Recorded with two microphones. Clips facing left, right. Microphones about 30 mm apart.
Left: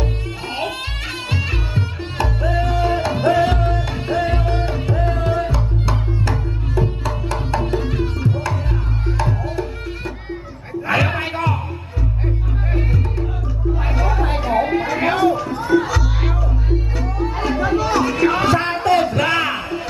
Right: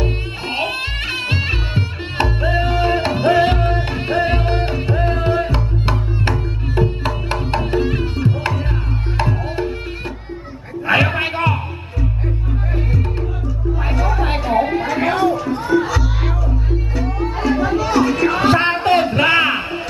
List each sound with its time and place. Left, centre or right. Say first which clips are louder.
0.0 s music: right 3 dB; right
7.5 s music: right 3 dB; right
10.9 s music: right 3 dB; right
13.9 s music: right 2 dB; centre
14.6 s a sound: even; centre
15.7 s music: left 1 dB; centre
17.4 s music: right 2 dB; centre
18.5 s a sound: right 2 dB; right